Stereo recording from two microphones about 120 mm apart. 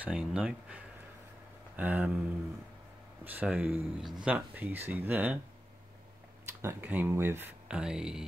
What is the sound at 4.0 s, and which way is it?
Speech, centre (ahead or behind).